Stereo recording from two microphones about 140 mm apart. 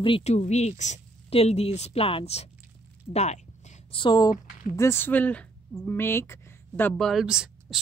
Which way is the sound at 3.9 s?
35° left (ahead or behind).